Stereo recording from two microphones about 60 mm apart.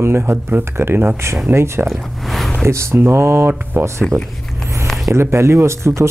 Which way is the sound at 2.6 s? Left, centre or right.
Right.